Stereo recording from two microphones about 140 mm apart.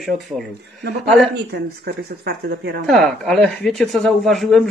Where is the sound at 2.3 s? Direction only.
90° right.